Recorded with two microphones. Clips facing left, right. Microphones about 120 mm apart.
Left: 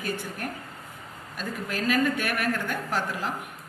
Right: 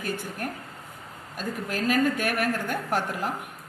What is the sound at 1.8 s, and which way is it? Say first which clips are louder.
A woman's voice: right 1 dB; 40° right (ahead or behind).